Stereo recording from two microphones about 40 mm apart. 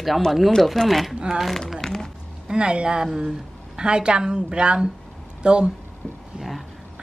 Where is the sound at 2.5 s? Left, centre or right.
Right.